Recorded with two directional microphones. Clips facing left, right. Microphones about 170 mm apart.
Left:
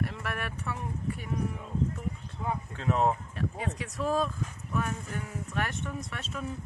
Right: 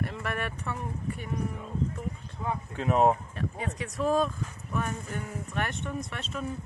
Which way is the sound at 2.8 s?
15° right (ahead or behind).